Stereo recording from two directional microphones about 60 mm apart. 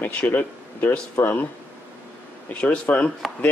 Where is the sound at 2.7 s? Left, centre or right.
Centre.